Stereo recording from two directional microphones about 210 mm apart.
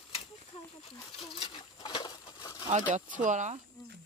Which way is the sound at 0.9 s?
20° left (ahead or behind).